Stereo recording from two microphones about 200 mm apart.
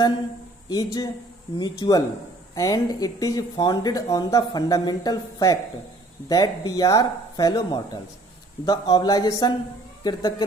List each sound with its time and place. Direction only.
0.7 s speech: 20° left (ahead or behind)